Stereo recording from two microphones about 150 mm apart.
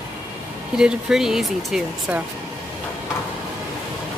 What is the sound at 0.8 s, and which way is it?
Speech, 5° right (ahead or behind).